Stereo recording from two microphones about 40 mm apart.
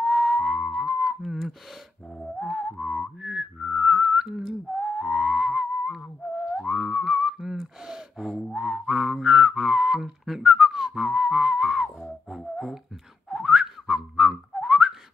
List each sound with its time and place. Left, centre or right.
0.0 s whistle: centre
2.4 s music: centre
3.2 s whistling: centre
6.4 s music: centre
7.3 s gasp: centre
7.8 s speech: centre
8.5 s a sound: centre
9.2 s whistling: centre
12.5 s beatboxing: centre
13.3 s whistling: centre
14.6 s whistle: centre